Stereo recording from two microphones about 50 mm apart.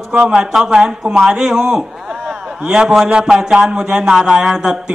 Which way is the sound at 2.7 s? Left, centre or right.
Centre.